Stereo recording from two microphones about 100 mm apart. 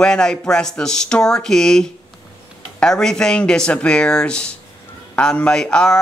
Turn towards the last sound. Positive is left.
turn(degrees=10)  # may be behind; listen again after turning